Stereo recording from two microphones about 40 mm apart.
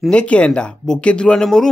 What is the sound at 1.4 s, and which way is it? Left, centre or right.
Speech, centre.